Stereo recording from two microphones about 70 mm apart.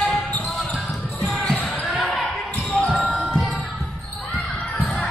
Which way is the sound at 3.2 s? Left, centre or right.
Centre.